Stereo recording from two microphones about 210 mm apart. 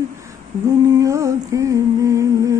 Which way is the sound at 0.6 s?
15° right (ahead or behind).